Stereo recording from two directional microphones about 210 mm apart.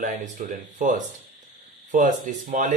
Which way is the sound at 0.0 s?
35° right (ahead or behind).